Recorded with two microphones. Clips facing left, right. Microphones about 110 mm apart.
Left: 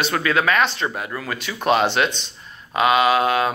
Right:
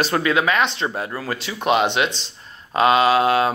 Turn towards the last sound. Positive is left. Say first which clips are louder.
# right 1 dB
turn(degrees=-30)  # may be behind; listen again after turning